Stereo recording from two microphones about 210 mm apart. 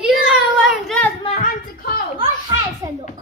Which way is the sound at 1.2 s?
30° left (ahead or behind).